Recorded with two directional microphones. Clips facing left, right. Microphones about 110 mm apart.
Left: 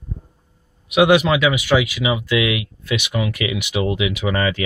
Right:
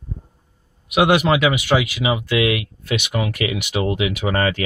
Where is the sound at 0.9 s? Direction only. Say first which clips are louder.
Left 1 dB; 50° right (ahead or behind).